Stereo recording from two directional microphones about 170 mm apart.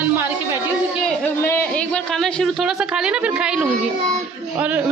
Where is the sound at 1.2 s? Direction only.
10° left (ahead or behind); by 3.7 s 5° right (ahead or behind).